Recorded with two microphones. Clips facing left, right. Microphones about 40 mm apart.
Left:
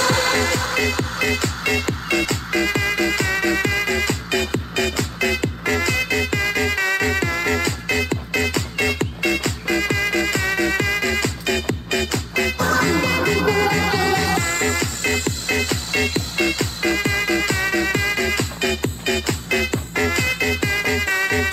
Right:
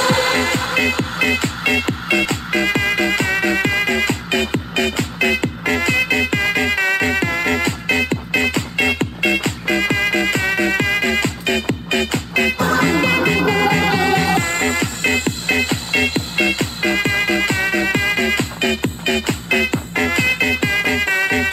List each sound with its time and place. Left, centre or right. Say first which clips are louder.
0.0 s music: right 2 dB; right